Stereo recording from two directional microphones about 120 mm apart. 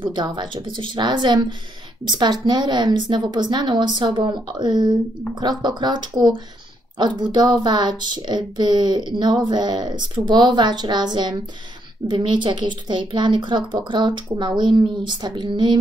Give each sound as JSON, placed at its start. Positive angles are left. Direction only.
{"t": 0.0, "sound": "speech", "side_deg": -40}